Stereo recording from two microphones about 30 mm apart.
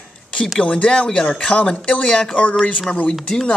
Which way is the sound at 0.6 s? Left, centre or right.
Left.